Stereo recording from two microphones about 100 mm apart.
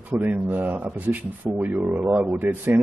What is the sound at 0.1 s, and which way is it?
Speech, 20° right (ahead or behind).